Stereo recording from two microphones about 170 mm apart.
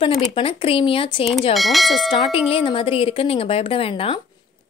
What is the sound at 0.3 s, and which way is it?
A woman's voice, 35° left (ahead or behind).